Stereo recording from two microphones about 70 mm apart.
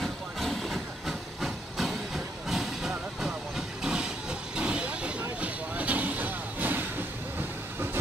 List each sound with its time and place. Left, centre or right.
0.0 s train: centre
3.2 s vehicle: centre; by 6.9 s right